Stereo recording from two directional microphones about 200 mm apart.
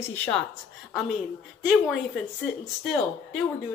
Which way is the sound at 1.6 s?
Centre (ahead or behind).